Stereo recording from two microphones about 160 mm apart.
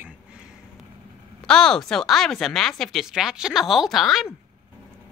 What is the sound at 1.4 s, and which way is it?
Speech, 5° left (ahead or behind).